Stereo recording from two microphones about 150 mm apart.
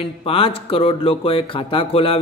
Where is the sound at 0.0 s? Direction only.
40° left (ahead or behind).